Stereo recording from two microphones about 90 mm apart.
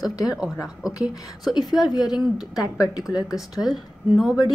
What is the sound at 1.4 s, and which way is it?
Speech, centre (ahead or behind).